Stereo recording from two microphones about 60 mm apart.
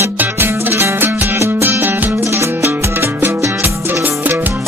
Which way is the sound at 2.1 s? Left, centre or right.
Right.